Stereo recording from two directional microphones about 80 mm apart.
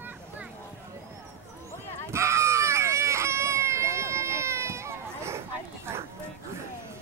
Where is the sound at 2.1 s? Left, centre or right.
Right.